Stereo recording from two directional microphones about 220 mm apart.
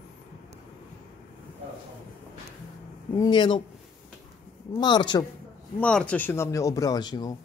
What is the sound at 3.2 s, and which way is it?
Speech, 20° left (ahead or behind).